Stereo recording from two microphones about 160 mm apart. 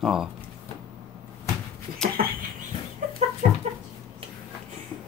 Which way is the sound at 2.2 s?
65° right (ahead or behind).